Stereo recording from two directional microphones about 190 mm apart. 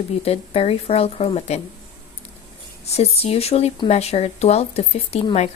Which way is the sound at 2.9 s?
30° left (ahead or behind).